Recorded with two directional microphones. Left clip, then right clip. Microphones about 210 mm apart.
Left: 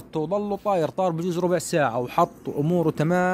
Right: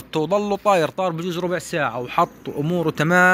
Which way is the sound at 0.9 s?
20° left (ahead or behind).